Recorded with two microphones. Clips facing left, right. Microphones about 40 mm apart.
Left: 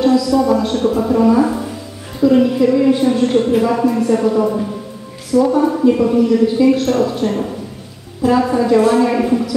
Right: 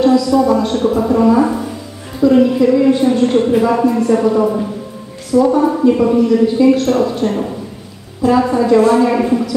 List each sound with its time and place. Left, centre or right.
0.0 s a woman's voice: centre